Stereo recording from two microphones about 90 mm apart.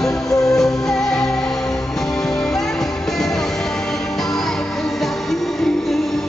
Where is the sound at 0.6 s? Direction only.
5° left (ahead or behind).